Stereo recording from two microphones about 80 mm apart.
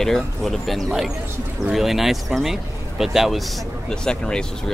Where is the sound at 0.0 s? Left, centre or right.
Centre.